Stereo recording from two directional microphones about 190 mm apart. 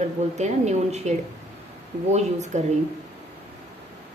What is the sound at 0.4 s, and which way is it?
A woman's voice, 35° right (ahead or behind).